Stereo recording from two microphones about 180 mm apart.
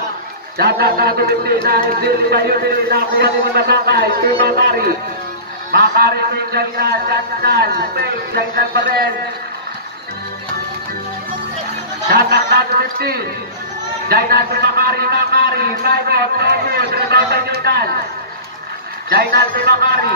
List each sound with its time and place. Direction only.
0.6 s a man's voice: 60° right (ahead or behind)
12.1 s a man's voice: 60° right (ahead or behind)
19.0 s a man's voice: 60° right (ahead or behind)